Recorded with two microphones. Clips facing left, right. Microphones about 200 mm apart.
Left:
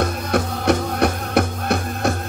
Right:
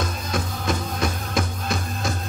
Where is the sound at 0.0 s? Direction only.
65° left (ahead or behind).